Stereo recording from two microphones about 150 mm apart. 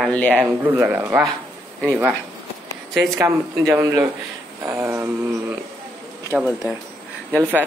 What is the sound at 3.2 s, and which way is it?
Speech, 15° right (ahead or behind).